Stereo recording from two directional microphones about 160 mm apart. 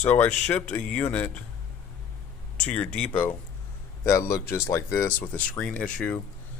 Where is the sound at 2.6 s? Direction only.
10° left (ahead or behind).